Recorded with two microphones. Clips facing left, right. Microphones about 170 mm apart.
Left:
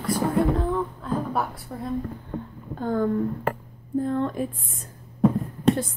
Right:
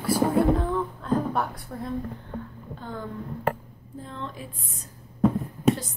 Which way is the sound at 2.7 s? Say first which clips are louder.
Left 12 dB; 50° left (ahead or behind).